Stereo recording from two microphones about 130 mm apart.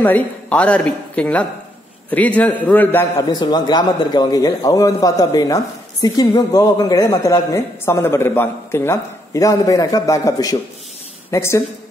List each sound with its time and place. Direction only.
0.0 s a woman's voice: 10° left (ahead or behind)
3.3 s speech: 30° left (ahead or behind)